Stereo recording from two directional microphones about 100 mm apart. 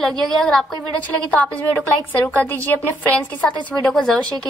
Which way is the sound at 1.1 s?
15° left (ahead or behind).